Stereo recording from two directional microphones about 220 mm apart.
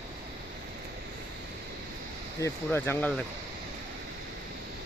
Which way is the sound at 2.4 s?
10° left (ahead or behind).